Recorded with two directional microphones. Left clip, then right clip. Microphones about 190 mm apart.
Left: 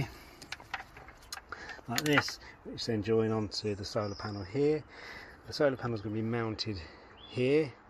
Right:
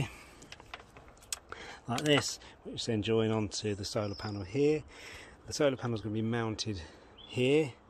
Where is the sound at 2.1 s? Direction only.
30° right (ahead or behind).